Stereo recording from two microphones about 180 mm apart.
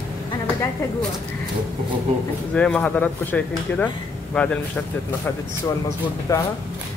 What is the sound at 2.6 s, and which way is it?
Speech, 5° left (ahead or behind).